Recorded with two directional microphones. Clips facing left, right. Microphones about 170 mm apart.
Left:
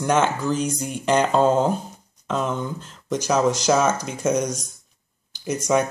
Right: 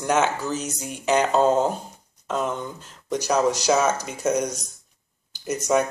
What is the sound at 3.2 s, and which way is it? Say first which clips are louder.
Speech: left 1 dB; 10° right (ahead or behind).